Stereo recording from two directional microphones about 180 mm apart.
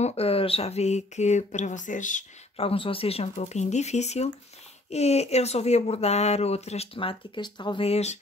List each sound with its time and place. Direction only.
0.0 s speech: 35° left (ahead or behind)
2.6 s speech: 30° left (ahead or behind)